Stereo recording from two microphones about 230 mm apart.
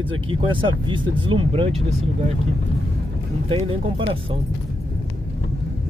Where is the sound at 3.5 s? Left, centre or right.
Right.